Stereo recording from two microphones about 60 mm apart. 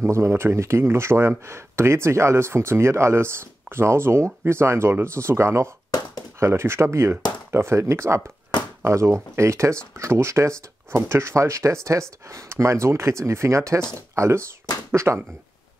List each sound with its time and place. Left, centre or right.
0.0 s speech: right